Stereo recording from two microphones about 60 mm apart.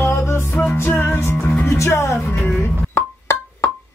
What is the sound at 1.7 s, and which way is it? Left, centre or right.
Music, left.